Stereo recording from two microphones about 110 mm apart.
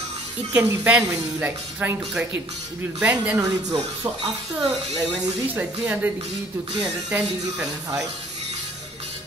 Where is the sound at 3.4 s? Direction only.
35° right (ahead or behind).